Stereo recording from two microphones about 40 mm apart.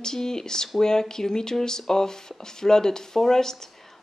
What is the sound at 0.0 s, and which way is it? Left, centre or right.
Speech, centre.